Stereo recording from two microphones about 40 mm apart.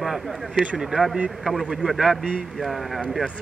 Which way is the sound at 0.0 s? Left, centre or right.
Centre.